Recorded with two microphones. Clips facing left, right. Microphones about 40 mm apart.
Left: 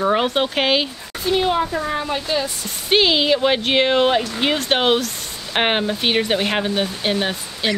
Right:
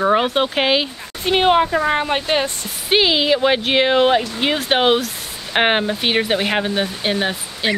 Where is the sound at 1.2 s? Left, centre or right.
Right.